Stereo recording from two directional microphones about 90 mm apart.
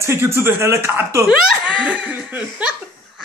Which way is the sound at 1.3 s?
15° right (ahead or behind).